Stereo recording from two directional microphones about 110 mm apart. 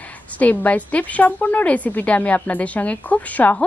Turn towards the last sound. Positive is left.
turn(degrees=15)  # may be behind; listen again after turning